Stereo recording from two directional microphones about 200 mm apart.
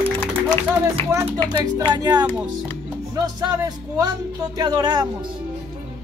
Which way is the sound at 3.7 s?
15° right (ahead or behind).